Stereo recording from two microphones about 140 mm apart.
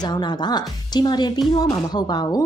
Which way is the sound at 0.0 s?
30° left (ahead or behind).